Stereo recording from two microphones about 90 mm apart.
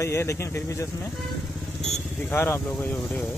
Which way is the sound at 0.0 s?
30° left (ahead or behind).